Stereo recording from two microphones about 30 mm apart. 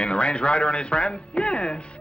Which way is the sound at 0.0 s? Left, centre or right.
Left.